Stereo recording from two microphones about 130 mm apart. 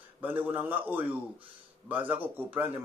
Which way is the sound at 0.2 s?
15° right (ahead or behind).